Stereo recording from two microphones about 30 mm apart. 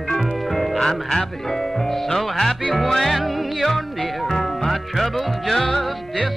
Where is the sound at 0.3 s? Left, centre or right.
Centre.